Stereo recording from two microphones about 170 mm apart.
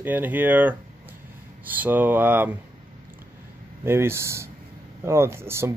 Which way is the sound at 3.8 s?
15° right (ahead or behind).